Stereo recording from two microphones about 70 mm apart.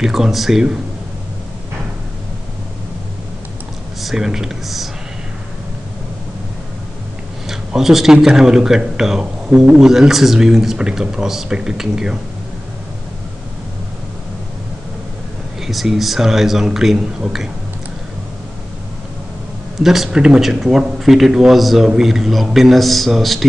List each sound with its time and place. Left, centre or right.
0.0 s speech: centre
4.0 s speech: centre
7.4 s speech: centre
15.6 s speech: centre
19.8 s speech: centre